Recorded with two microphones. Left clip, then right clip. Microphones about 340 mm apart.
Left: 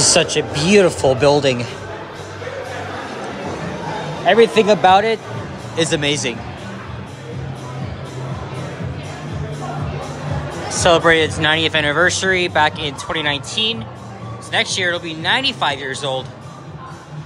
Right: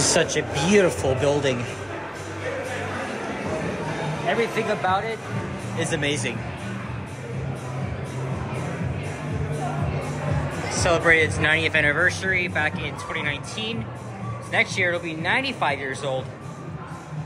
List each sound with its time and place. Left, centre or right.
0.0 s speech: centre
4.6 s speech: centre
10.7 s speech: centre